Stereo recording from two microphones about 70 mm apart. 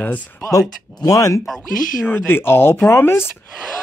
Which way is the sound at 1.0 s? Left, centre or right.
Left.